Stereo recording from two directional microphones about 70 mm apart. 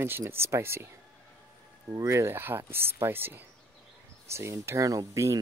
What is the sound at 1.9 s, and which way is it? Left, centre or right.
Speech, right.